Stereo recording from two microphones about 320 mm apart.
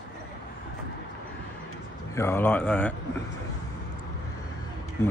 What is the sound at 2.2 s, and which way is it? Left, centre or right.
Speech, centre.